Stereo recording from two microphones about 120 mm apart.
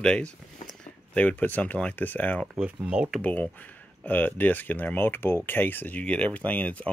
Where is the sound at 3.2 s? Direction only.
15° left (ahead or behind).